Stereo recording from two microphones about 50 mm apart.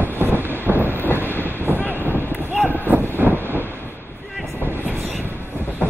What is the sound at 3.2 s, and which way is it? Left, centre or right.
Vehicle, right.